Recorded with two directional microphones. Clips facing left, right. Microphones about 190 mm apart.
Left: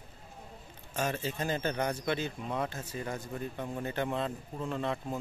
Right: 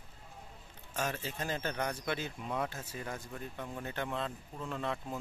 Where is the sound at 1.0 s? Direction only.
Centre (ahead or behind).